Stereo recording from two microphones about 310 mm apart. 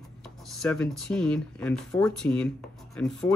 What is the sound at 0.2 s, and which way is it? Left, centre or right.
Speech, centre.